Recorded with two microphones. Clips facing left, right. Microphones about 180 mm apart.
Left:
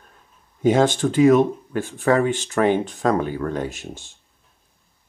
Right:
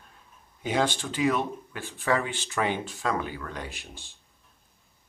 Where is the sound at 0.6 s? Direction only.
45° left (ahead or behind).